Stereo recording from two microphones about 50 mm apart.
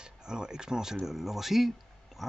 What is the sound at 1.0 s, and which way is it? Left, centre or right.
Speech, centre.